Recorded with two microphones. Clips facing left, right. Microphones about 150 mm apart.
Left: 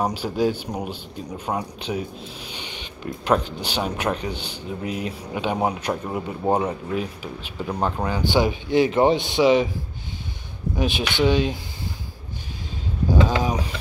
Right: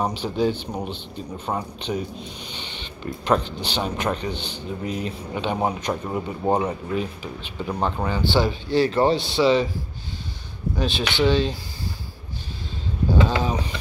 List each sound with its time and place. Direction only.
0.0 s speech: 10° left (ahead or behind)
10.8 s speech: 15° left (ahead or behind)
13.3 s a sound: 10° left (ahead or behind)